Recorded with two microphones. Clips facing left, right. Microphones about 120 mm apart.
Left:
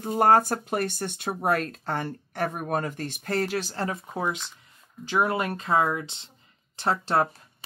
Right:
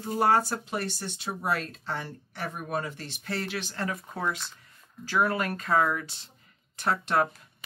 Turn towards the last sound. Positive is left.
turn(degrees=30)  # may be behind; listen again after turning